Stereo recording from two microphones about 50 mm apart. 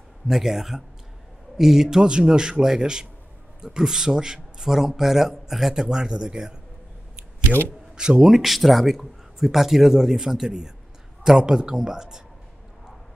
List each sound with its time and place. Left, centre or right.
0.3 s a man's voice: centre
7.5 s a man's voice: right
7.9 s a man's voice: centre